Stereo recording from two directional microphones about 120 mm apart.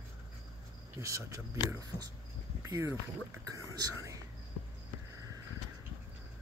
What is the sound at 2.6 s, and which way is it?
Boat, 25° right (ahead or behind).